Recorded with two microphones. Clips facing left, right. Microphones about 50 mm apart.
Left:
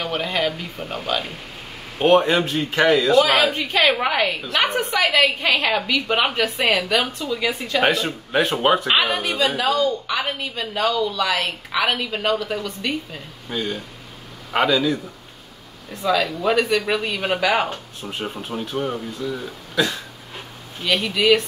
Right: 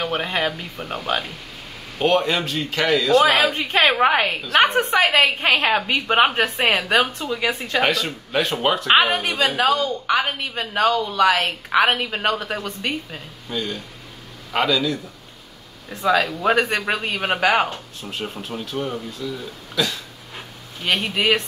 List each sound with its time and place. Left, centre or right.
0.0 s speech: right
2.0 s speech: left
3.2 s a woman's voice: right
7.8 s speech: left
8.8 s a woman's voice: right
13.5 s a man's voice: centre
15.9 s a woman's voice: right
18.2 s a man's voice: centre
18.7 s speech: left
20.8 s a woman's voice: right